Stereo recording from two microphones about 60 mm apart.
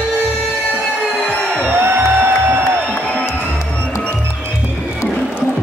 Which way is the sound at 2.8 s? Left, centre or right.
Left.